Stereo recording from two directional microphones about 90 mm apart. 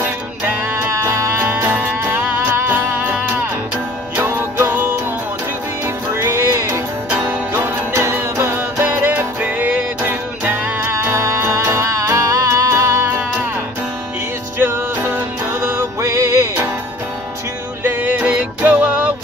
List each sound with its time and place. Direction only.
0.0 s music: 25° right (ahead or behind)
1.5 s music: 20° right (ahead or behind)
6.1 s music: 30° right (ahead or behind)
9.4 s music: 15° right (ahead or behind); by 13.1 s 35° right (ahead or behind)
14.6 s music: 25° right (ahead or behind)
17.8 s music: 20° right (ahead or behind)